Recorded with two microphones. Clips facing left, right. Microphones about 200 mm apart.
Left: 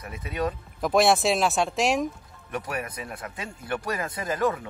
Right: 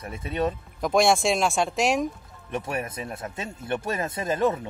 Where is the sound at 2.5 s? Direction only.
25° right (ahead or behind).